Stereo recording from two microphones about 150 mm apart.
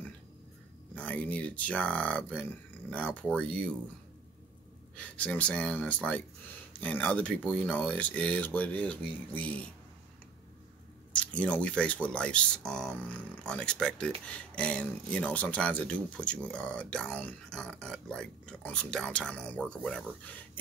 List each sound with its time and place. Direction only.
0.9 s speech: 10° left (ahead or behind)
4.9 s speech: 10° left (ahead or behind)
11.1 s speech: 10° left (ahead or behind)